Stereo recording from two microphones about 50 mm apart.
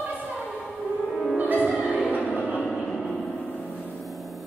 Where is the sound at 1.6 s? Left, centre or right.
Right.